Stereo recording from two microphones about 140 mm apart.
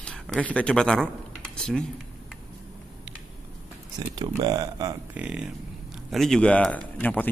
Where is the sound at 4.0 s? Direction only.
30° right (ahead or behind).